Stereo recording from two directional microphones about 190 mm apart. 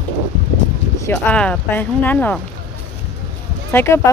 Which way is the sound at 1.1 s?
5° left (ahead or behind).